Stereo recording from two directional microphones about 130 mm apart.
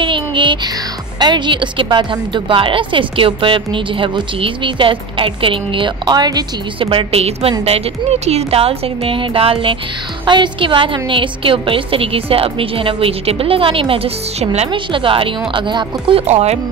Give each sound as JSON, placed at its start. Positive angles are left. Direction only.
{"t": 0.0, "sound": "music", "side_deg": -40}
{"t": 1.2, "sound": "a woman's voice", "side_deg": -35}
{"t": 14.7, "sound": "a woman's voice", "side_deg": -40}
{"t": 16.3, "sound": "speech", "side_deg": -55}